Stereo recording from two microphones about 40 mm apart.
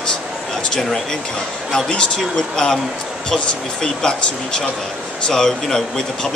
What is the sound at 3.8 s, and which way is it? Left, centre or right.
Speech, centre.